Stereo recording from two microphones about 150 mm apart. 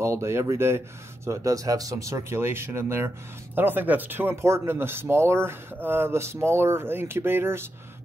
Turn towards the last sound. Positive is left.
turn(degrees=-15)  # may be behind; listen again after turning